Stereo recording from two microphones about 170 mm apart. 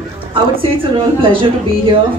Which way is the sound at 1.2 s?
30° right (ahead or behind).